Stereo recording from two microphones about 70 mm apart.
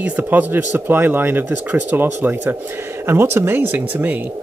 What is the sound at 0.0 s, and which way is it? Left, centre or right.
Speech, right.